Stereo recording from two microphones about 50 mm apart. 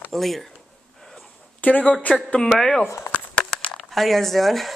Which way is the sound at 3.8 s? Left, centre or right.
Centre.